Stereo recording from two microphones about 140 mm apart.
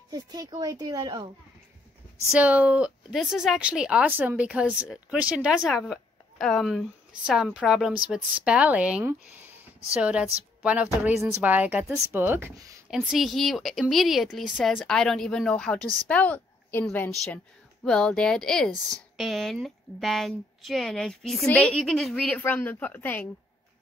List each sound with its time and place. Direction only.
0.1 s speech: 30° right (ahead or behind)
2.3 s speech: 10° right (ahead or behind)
12.9 s a woman's voice: 5° right (ahead or behind); by 23.2 s 15° left (ahead or behind)